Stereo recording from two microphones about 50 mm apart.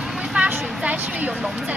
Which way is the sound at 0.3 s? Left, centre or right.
Right.